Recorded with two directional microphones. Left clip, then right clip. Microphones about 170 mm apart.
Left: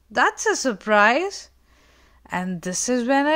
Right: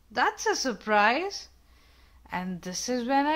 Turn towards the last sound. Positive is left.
turn(degrees=40)  # may be behind; listen again after turning